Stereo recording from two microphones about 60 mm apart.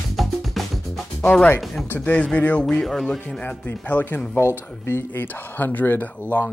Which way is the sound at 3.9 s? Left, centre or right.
Left.